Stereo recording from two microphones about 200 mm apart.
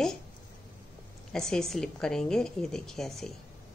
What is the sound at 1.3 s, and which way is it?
A woman's voice, 5° left (ahead or behind).